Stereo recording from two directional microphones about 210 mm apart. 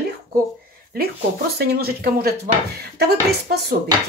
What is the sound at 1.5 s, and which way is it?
Speech, 45° right (ahead or behind).